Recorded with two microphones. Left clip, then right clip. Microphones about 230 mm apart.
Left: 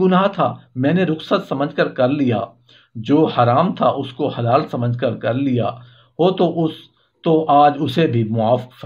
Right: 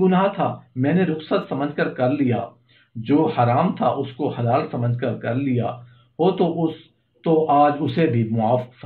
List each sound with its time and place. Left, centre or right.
0.0 s speech: left